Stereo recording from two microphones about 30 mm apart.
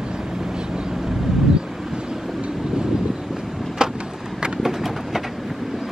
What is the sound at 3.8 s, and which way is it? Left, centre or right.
Vehicle, right.